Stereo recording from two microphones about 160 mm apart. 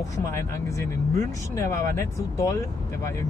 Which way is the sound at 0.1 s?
20° left (ahead or behind).